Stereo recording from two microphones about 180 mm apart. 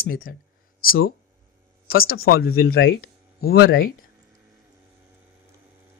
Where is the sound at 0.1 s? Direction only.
50° left (ahead or behind).